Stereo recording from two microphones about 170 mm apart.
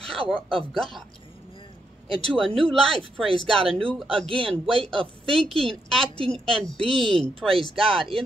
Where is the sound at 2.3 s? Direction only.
5° left (ahead or behind).